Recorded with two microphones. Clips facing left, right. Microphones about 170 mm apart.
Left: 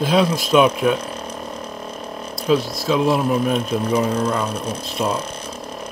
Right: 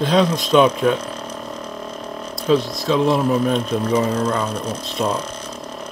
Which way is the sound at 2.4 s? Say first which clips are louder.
Right 1 dB; 5° left (ahead or behind).